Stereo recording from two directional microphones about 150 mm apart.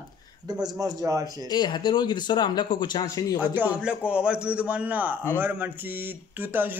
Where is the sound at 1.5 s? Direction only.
30° left (ahead or behind).